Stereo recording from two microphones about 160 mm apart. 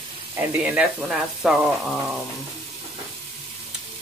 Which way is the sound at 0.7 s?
10° right (ahead or behind).